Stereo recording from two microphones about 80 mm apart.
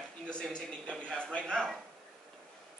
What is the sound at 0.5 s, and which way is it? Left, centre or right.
A man's voice, centre.